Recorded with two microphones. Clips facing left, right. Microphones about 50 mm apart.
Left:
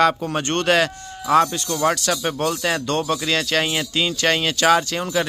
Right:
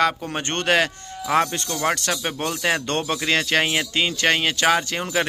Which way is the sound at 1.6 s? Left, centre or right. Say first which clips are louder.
Left 3 dB; centre.